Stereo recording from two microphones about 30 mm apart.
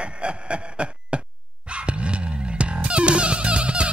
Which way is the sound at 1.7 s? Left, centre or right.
Right.